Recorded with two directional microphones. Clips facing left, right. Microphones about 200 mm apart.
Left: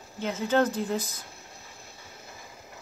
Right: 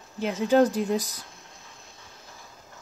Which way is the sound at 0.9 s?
35° right (ahead or behind).